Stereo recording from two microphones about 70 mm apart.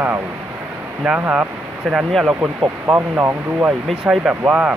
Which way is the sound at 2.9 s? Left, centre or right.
Right.